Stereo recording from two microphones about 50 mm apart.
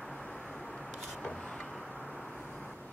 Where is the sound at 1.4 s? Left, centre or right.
Centre.